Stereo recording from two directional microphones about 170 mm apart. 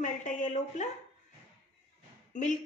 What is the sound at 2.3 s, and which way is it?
Speech, 45° left (ahead or behind).